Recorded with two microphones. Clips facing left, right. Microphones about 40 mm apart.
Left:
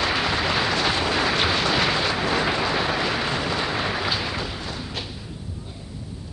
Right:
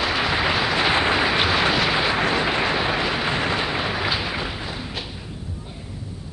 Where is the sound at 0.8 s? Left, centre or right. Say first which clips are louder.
Right 3 dB; right.